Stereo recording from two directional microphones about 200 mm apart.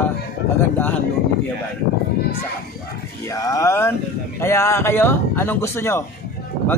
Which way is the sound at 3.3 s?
15° left (ahead or behind).